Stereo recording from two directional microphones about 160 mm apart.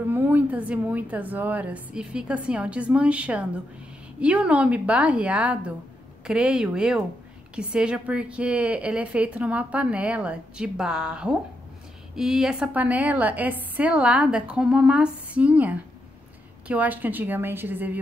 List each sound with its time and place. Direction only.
0.1 s a woman's voice: 10° right (ahead or behind)